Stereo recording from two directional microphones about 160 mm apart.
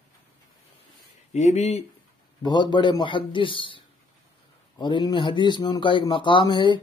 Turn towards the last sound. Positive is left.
turn(degrees=30)  # may be behind; listen again after turning